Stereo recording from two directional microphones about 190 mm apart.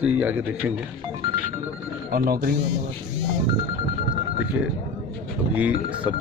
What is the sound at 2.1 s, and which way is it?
Speech, 50° right (ahead or behind).